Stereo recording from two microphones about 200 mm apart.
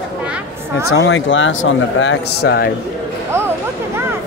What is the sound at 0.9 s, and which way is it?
Speech, 80° left.